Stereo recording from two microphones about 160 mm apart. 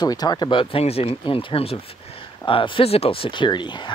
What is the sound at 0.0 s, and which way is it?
Speech, 25° left (ahead or behind).